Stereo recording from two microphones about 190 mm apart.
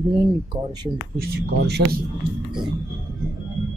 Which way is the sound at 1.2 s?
60° right (ahead or behind).